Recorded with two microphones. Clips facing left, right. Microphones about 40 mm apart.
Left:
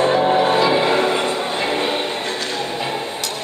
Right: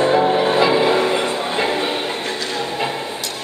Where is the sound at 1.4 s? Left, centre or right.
Centre.